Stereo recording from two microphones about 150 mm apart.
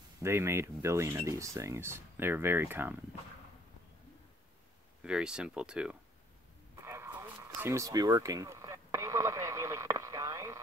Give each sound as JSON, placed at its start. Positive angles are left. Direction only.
{"t": 0.2, "sound": "speech", "side_deg": -15}
{"t": 5.0, "sound": "speech", "side_deg": -5}
{"t": 6.8, "sound": "a sound", "side_deg": -15}